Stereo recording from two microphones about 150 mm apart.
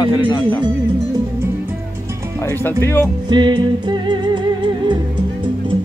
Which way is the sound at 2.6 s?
15° left (ahead or behind).